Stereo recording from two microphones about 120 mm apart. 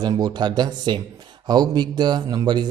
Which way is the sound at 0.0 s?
35° right (ahead or behind).